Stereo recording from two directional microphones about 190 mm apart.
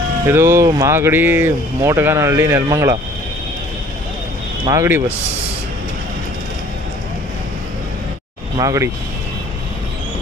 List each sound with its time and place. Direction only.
0.3 s speech: 15° right (ahead or behind)
4.6 s speech: 15° right (ahead or behind)
8.5 s speech: 15° right (ahead or behind)